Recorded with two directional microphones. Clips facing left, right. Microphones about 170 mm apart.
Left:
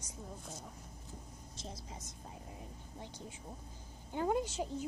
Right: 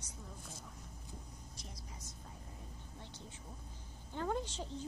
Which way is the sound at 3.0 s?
10° left (ahead or behind).